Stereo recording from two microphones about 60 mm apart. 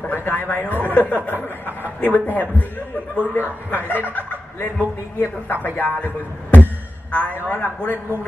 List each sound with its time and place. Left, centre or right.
0.1 s a man's voice: left